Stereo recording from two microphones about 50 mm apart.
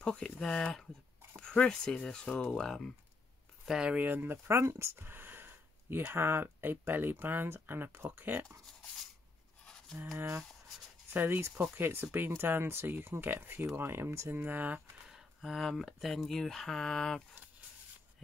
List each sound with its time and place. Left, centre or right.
0.0 s speech: centre
3.6 s speech: centre
3.9 s speech: right
4.9 s speech: right
10.1 s speech: right
11.1 s speech: right
14.3 s speech: right
15.0 s speech: centre